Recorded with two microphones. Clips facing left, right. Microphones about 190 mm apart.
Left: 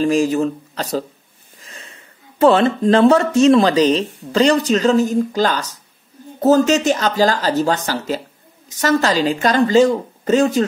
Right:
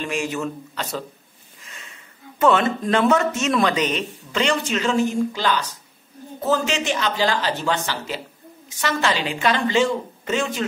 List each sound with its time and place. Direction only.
0.0 s a woman's voice: 35° left (ahead or behind)